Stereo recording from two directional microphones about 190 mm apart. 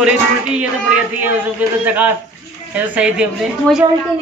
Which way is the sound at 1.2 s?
10° right (ahead or behind).